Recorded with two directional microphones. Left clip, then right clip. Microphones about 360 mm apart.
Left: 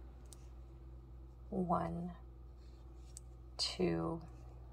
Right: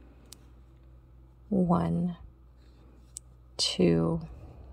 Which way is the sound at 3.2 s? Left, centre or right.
Right.